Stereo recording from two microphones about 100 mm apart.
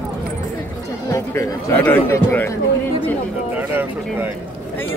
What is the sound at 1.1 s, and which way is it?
Chatter, 30° left (ahead or behind).